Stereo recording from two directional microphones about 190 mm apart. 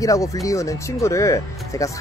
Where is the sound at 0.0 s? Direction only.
15° left (ahead or behind).